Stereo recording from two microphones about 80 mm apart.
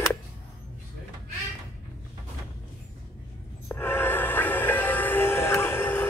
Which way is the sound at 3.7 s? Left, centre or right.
Left.